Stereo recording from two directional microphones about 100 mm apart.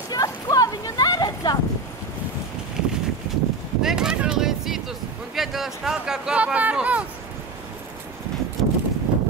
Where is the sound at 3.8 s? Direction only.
5° right (ahead or behind).